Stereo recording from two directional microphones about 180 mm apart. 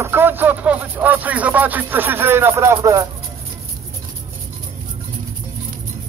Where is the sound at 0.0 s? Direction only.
10° right (ahead or behind).